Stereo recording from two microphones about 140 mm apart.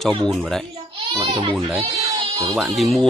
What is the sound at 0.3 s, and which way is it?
Speech, 5° left (ahead or behind).